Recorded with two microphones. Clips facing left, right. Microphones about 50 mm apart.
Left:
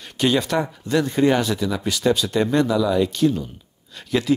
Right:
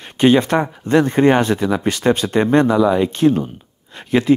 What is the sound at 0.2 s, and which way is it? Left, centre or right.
Speech, right.